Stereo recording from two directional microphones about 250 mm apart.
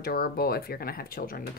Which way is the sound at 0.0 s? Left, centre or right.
Left.